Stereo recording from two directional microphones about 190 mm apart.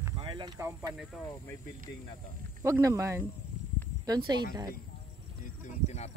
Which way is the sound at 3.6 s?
40° right (ahead or behind).